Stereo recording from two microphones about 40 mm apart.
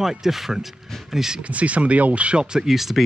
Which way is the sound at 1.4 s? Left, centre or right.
Right.